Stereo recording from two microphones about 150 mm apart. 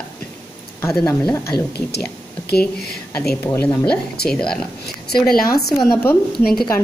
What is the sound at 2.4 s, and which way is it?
Speech, 90° left.